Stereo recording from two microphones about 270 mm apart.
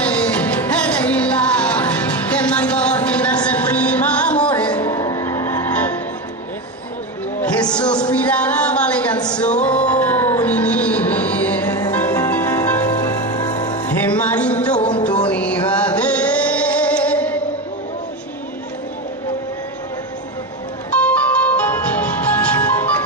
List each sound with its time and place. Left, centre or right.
0.0 s music: centre
8.0 s a sound: centre
9.3 s music: centre
21.0 s music: centre